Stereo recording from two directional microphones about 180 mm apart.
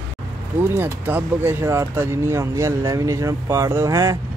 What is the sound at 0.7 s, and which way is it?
Speech, 10° right (ahead or behind).